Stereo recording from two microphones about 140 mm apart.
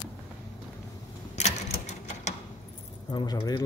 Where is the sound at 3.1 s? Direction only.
30° left (ahead or behind).